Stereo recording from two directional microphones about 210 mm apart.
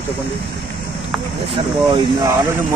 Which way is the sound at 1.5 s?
20° right (ahead or behind).